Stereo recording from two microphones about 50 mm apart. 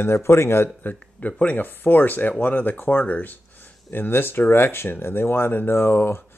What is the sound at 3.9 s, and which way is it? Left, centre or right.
Speech, left.